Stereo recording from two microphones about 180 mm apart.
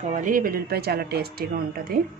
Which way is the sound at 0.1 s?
45° right (ahead or behind).